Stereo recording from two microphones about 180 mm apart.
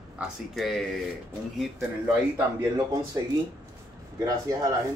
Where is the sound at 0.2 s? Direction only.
Centre (ahead or behind).